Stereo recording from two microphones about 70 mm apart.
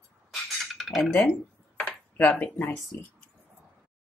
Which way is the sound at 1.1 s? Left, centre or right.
Left.